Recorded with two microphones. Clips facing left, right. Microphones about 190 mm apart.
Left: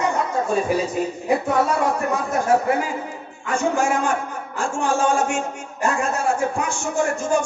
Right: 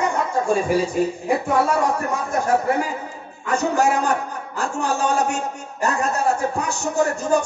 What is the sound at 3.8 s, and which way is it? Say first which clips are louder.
A man's voice: right 2 dB; 40° right (ahead or behind).